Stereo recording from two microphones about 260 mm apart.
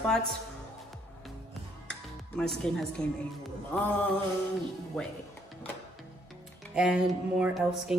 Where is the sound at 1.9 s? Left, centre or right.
Centre.